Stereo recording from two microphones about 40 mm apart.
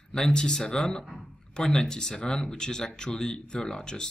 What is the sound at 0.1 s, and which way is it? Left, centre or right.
Speech, centre.